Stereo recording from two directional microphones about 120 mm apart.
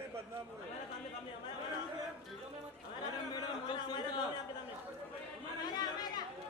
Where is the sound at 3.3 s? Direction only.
40° left (ahead or behind).